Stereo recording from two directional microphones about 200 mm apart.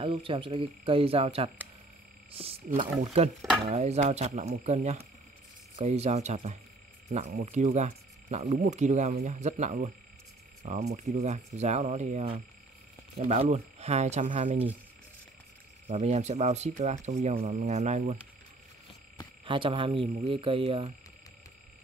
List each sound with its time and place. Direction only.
0.0 s speech: 25° right (ahead or behind)
15.9 s speech: 35° right (ahead or behind)
19.4 s speech: 25° right (ahead or behind)